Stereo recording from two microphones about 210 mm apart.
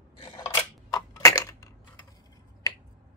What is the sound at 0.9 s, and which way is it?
Crushing, 15° left (ahead or behind).